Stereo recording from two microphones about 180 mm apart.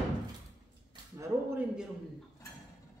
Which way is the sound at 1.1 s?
15° right (ahead or behind).